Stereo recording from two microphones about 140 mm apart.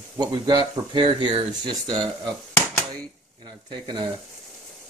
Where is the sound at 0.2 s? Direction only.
30° right (ahead or behind).